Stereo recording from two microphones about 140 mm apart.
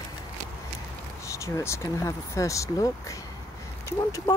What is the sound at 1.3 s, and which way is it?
Speech, 20° left (ahead or behind).